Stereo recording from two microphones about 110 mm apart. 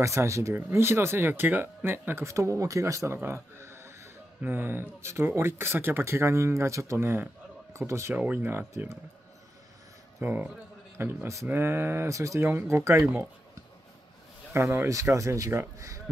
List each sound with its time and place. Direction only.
0.0 s speech: 25° right (ahead or behind)
3.2 s a sound: 20° right (ahead or behind)
4.4 s speech: 20° right (ahead or behind)
10.2 s speech: 15° right (ahead or behind)
14.5 s speech: 25° right (ahead or behind)